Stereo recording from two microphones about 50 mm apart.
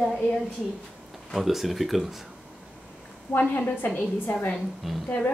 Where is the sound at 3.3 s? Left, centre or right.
Left.